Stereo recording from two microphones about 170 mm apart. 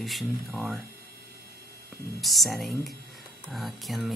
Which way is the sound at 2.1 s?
Centre (ahead or behind).